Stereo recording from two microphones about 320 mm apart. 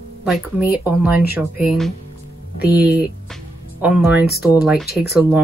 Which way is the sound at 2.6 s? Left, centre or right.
Left.